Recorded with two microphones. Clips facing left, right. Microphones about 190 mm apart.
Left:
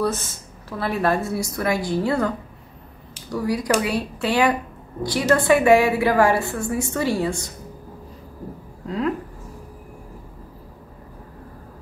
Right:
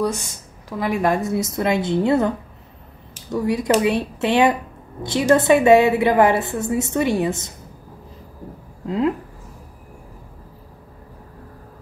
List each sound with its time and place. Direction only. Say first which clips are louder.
0.0 s a woman's voice: right 1 dB; 15° right (ahead or behind)
8.8 s speech: right 4 dB; 20° right (ahead or behind)